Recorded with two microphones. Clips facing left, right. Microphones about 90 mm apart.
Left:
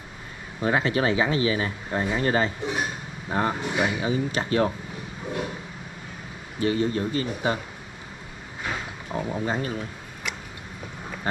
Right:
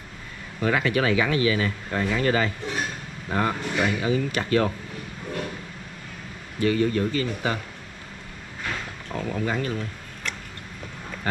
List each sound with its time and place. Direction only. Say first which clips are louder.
0.6 s speech: even; 25° left (ahead or behind)
2.6 s speech: left 2 dB; 15° left (ahead or behind)
3.3 s speech: even; 25° left (ahead or behind)
6.6 s speech: right 2 dB; 25° left (ahead or behind)
8.6 s a sound: left 1 dB; 15° left (ahead or behind)
9.3 s speech: right 2 dB; 25° left (ahead or behind)